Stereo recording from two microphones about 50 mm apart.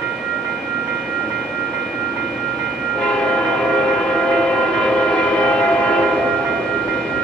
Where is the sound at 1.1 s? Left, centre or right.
Centre.